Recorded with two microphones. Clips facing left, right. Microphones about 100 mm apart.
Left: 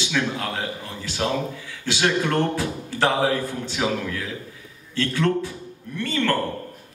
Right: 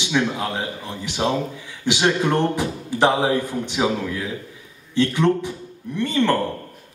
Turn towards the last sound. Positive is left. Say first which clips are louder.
# right 4 dB
turn(degrees=-20)  # may be behind; listen again after turning